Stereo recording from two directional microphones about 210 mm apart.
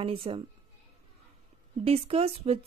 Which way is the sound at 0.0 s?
25° right (ahead or behind).